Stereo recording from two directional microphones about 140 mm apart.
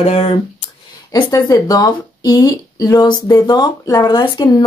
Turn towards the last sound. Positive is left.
turn(degrees=30)  # may be behind; listen again after turning